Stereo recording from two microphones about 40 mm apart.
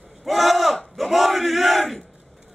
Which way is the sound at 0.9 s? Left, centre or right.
Centre.